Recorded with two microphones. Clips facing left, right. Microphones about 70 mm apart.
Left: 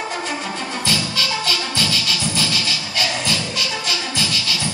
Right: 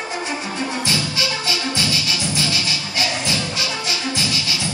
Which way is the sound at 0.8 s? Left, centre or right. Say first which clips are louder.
Even; right.